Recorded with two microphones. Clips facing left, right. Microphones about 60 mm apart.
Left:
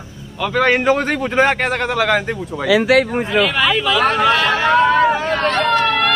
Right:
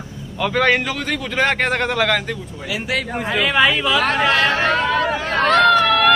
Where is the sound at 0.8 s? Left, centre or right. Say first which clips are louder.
Left 8 dB; left.